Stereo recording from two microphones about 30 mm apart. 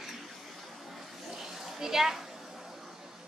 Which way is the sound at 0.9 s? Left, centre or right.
Centre.